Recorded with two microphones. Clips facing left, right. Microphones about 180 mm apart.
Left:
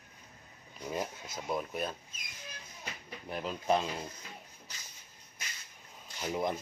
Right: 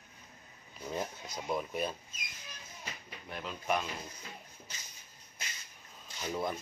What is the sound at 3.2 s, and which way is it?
Speech, 35° left (ahead or behind).